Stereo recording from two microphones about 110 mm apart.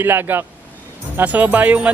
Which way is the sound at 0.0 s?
20° right (ahead or behind).